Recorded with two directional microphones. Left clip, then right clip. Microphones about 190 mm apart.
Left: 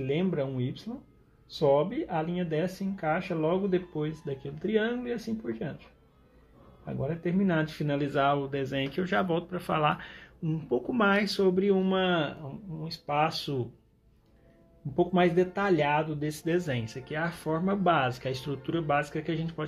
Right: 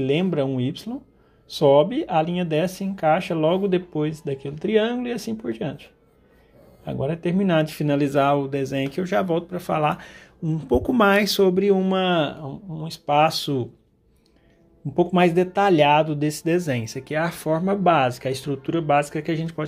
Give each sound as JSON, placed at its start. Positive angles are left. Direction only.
{"t": 0.0, "sound": "speech", "side_deg": -30}
{"t": 6.8, "sound": "speech", "side_deg": -30}
{"t": 15.0, "sound": "speech", "side_deg": -30}